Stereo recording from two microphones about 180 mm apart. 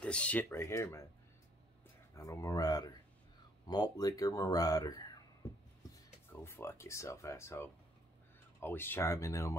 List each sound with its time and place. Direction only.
0.0 s speech: 5° left (ahead or behind)
2.1 s speech: 15° left (ahead or behind)
6.3 s speech: 15° left (ahead or behind)